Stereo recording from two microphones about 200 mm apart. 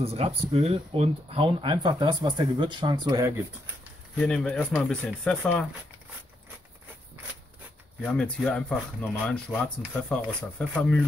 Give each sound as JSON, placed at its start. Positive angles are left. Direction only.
{"t": 0.0, "sound": "speech", "side_deg": -30}
{"t": 4.2, "sound": "speech", "side_deg": 5}
{"t": 8.1, "sound": "speech", "side_deg": 5}